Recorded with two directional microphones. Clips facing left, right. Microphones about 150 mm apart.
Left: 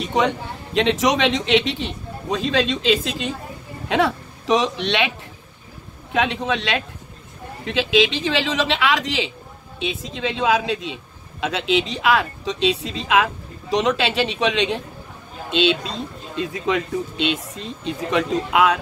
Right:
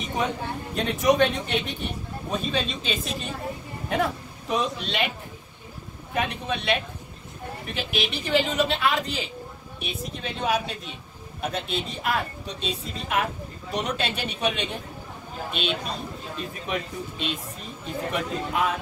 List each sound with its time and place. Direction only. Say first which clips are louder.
0.0 s a man's voice: left 7 dB; 80° left
6.1 s speech: left 6 dB; 90° left